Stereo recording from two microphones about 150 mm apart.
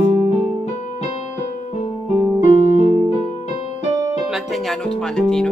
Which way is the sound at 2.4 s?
50° left (ahead or behind).